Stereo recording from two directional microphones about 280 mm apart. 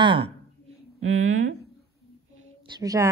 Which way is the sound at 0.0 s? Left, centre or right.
Centre.